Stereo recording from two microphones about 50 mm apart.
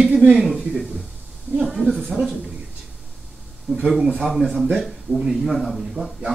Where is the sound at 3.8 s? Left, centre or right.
Centre.